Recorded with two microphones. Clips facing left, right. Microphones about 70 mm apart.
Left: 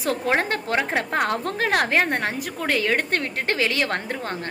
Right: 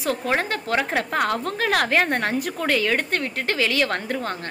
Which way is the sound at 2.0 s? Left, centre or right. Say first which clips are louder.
Right 2 dB; centre.